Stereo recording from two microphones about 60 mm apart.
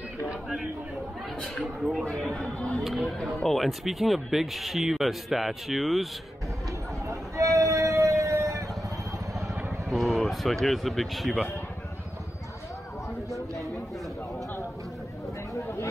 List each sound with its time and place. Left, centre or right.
0.3 s speech: centre
2.0 s speech: centre
2.8 s speech: centre
7.1 s a sound: right
9.8 s speech: centre
15.5 s a sound: left